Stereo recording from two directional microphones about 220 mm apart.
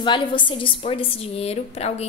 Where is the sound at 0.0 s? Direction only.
20° left (ahead or behind).